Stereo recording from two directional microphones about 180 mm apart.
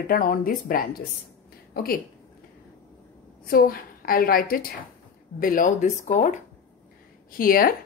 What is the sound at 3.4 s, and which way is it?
A woman's voice, 55° left (ahead or behind).